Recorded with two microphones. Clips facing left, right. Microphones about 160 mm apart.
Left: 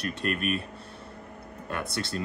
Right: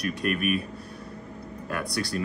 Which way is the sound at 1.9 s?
25° left (ahead or behind).